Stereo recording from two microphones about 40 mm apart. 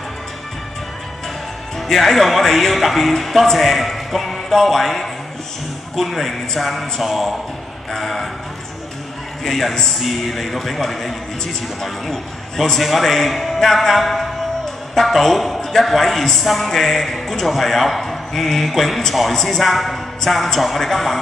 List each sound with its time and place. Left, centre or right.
1.8 s speech: centre
9.4 s speech: centre